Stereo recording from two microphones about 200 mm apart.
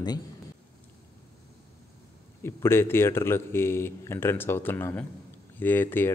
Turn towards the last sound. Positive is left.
turn(degrees=10)  # may be behind; listen again after turning